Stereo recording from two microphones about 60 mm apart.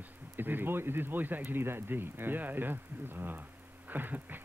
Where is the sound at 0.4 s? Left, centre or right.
Right.